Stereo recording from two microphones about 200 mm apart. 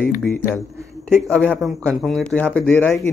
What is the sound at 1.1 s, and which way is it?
Speech, centre (ahead or behind).